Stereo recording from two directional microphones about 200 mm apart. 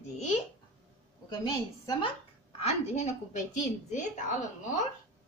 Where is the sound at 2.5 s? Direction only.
30° left (ahead or behind).